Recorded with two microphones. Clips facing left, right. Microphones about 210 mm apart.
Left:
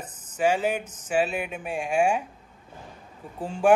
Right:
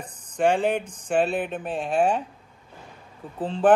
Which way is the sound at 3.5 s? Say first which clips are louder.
Right 1 dB; 10° left (ahead or behind).